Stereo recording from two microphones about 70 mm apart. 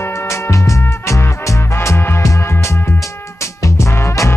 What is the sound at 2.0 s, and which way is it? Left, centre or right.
Music, left.